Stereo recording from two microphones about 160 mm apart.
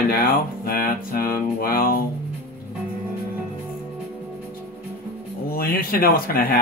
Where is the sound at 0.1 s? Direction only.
65° left (ahead or behind).